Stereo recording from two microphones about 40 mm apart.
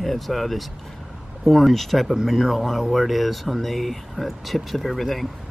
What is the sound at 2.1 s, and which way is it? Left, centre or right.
Speech, centre.